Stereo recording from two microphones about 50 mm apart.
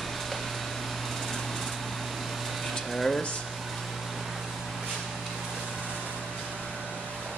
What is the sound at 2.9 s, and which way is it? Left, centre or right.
Speech, centre.